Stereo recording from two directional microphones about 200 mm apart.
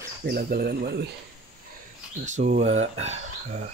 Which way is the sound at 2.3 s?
40° right (ahead or behind).